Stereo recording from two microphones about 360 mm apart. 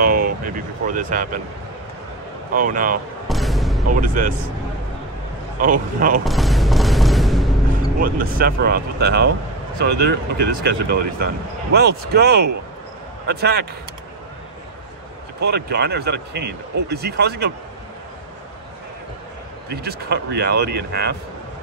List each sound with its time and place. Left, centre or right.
0.0 s speech: right
2.5 s speech: right
3.3 s music: centre
3.9 s speech: right
5.6 s speech: right
6.2 s mechanisms: centre
8.0 s speech: right
15.5 s speech: right
19.7 s speech: right